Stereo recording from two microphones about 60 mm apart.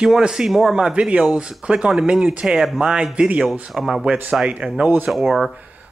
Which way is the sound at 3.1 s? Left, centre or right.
Centre.